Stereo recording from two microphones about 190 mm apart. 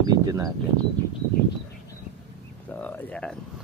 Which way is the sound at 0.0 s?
20° right (ahead or behind).